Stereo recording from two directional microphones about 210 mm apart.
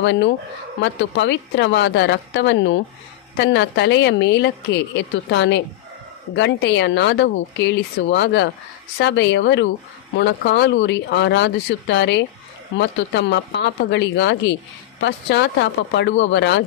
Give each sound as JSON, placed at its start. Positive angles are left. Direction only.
{"t": 0.0, "sound": "a woman's voice", "side_deg": 55}